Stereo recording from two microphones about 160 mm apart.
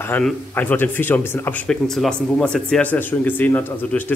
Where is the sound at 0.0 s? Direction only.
10° left (ahead or behind).